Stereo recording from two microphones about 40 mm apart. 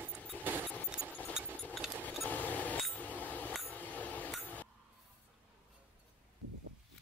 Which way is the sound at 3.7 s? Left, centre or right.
Left.